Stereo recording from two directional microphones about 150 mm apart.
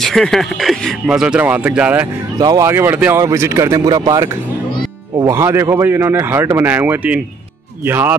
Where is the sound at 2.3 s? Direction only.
25° right (ahead or behind).